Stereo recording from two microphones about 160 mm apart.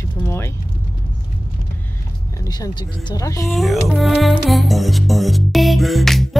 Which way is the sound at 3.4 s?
Centre (ahead or behind).